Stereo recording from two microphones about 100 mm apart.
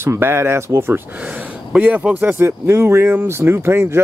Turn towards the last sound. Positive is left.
turn(degrees=-25)  # may be behind; listen again after turning